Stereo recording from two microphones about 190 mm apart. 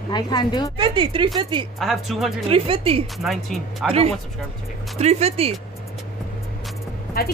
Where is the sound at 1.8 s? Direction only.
Centre (ahead or behind).